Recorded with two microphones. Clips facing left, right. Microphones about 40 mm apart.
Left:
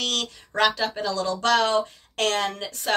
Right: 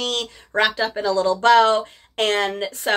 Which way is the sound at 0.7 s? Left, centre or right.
Centre.